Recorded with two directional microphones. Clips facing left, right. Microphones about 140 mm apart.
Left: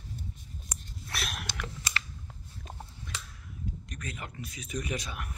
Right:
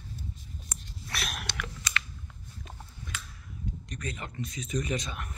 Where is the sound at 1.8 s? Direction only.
30° left (ahead or behind).